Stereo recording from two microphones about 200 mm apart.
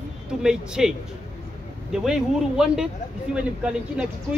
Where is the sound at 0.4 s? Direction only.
5° right (ahead or behind).